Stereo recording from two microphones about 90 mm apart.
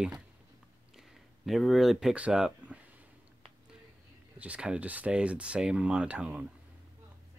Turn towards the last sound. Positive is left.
turn(degrees=-15)  # may be behind; listen again after turning